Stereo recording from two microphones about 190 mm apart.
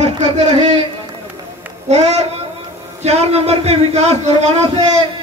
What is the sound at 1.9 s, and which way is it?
Speech, 35° right (ahead or behind).